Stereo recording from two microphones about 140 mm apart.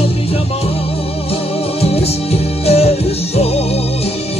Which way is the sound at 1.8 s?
45° left (ahead or behind).